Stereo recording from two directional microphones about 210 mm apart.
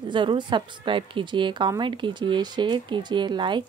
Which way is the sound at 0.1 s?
20° right (ahead or behind).